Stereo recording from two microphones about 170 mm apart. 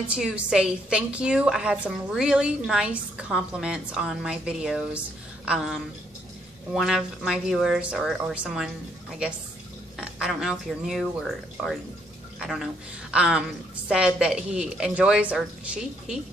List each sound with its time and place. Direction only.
0.1 s a woman's voice: 5° right (ahead or behind)
9.9 s a woman's voice: 5° right (ahead or behind)